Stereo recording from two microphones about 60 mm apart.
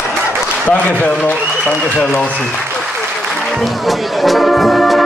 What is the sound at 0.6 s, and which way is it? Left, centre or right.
Speech, left.